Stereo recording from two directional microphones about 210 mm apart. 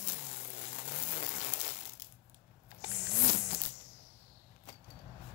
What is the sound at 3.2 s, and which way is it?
Insect, 35° left (ahead or behind).